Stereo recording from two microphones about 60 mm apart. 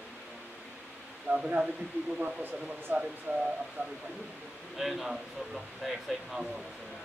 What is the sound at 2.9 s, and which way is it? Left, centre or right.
Speech, right.